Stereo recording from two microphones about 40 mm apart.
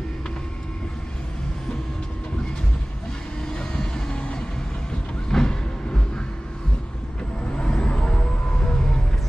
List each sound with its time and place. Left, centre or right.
3.5 s vehicle: centre
5.3 s train: centre
7.5 s music: left